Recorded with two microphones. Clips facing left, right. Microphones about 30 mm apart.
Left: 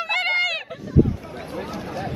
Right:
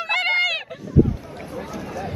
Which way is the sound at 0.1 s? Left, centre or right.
Centre.